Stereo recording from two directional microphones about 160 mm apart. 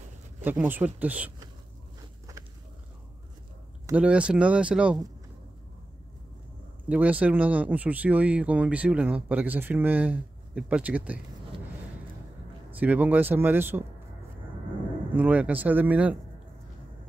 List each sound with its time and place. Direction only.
0.4 s speech: 10° right (ahead or behind)
2.0 s walk: 20° right (ahead or behind)
3.9 s speech: 5° right (ahead or behind)
6.9 s speech: 10° right (ahead or behind)
12.8 s speech: 10° right (ahead or behind)
15.1 s speech: 10° right (ahead or behind)